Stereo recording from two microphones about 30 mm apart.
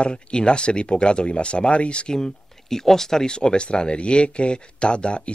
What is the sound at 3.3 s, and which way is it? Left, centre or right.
Speech, left.